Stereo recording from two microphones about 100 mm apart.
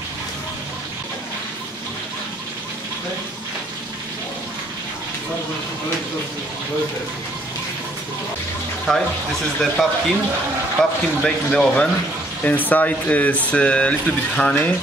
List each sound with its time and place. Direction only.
8.9 s speech: 5° left (ahead or behind)